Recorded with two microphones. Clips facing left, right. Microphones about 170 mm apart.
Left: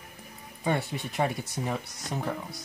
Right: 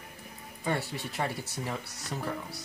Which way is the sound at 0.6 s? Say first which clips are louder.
Left 3 dB; 20° left (ahead or behind).